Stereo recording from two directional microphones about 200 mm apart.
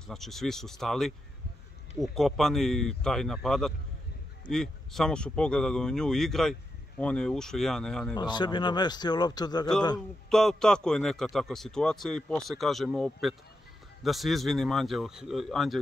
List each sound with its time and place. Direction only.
0.0 s a man's voice: centre (ahead or behind)
8.2 s speech: 20° left (ahead or behind)
10.3 s a man's voice: centre (ahead or behind)